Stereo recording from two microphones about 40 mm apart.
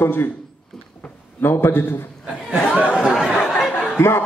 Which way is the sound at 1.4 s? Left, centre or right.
Left.